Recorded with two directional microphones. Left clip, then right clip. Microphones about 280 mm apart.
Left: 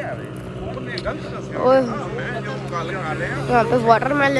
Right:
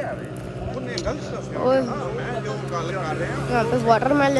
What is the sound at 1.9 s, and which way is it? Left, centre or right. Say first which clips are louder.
Speech: left 1 dB; right.